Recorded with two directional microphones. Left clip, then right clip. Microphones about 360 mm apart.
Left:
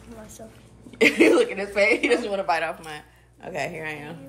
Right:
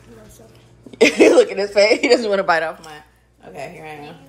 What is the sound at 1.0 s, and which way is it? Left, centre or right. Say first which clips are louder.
Speech: right 6 dB; centre.